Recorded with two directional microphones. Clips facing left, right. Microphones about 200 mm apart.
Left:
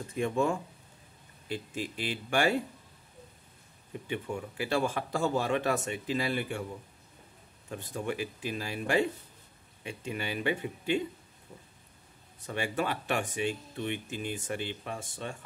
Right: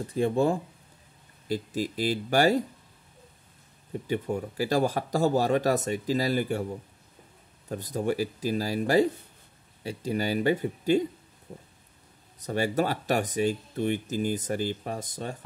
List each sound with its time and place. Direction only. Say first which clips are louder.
0.0 s speech: right 5 dB; 35° right (ahead or behind)
4.1 s speech: right 6 dB; 35° right (ahead or behind)
7.7 s speech: right 6 dB; 40° right (ahead or behind)
11.5 s a sound: right 7 dB; 45° right (ahead or behind)
12.4 s speech: right 6 dB; 40° right (ahead or behind)